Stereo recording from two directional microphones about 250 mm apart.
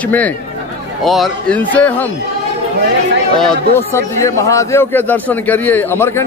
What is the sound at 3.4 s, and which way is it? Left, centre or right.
A man's voice, centre.